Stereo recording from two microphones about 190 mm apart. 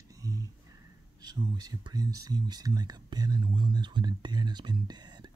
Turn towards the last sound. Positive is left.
turn(degrees=-20)  # may be behind; listen again after turning